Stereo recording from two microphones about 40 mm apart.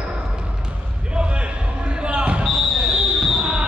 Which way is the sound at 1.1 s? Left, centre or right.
Right.